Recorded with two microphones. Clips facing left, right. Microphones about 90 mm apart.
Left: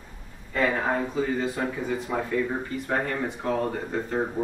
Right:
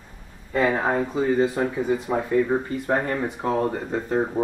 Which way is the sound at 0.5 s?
25° right (ahead or behind).